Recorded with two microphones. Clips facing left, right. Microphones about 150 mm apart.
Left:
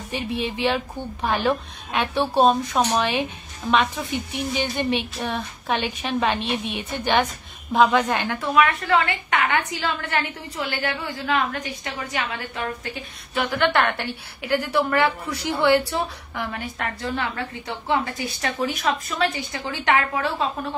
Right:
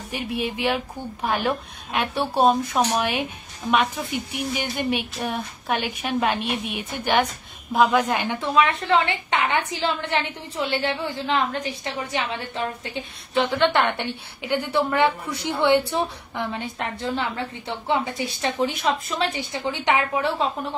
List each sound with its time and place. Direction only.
0.1 s a woman's voice: 10° right (ahead or behind)